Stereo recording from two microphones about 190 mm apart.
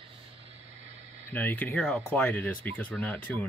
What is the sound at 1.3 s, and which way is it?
Speech, 10° left (ahead or behind).